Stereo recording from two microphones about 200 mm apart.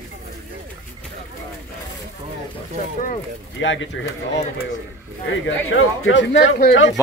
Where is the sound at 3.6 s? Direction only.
70° left (ahead or behind).